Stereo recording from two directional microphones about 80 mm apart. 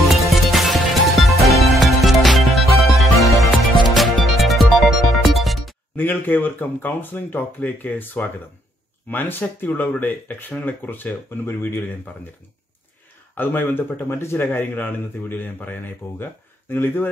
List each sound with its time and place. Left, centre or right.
0.1 s music: centre
5.9 s speech: left
13.3 s speech: left